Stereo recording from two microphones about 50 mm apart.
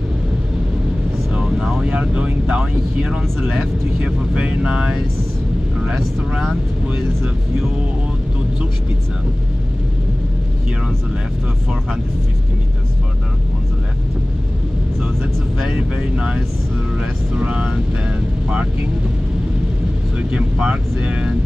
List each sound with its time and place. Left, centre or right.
1.3 s speech: centre
15.7 s speech: centre
17.4 s speech: right
20.2 s speech: right